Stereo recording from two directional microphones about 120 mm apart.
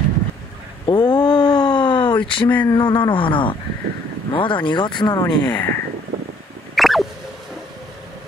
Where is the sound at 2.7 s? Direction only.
40° left (ahead or behind).